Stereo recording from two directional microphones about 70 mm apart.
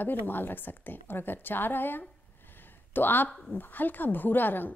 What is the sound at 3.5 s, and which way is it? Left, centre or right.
Speech, left.